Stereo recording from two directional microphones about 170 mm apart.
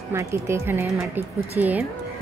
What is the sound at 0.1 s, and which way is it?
Speech, 15° right (ahead or behind).